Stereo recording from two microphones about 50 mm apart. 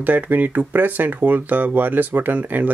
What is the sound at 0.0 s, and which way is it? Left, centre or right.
Speech, right.